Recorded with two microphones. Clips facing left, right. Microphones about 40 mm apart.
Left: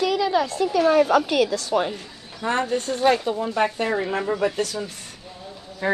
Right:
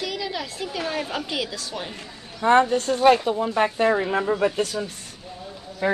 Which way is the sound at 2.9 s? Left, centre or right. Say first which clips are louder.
Right 2 dB; centre.